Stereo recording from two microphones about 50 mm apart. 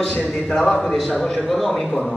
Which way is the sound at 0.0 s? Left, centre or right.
Centre.